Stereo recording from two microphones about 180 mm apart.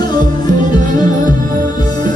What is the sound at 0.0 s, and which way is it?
Music, 25° left (ahead or behind).